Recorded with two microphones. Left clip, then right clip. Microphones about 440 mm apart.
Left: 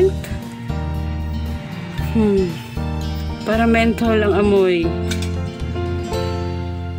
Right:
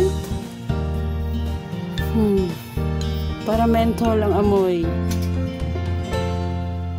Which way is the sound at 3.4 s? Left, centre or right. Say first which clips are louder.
Left 3 dB; right.